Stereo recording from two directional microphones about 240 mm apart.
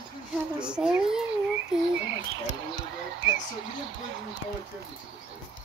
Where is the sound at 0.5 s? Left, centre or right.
Centre.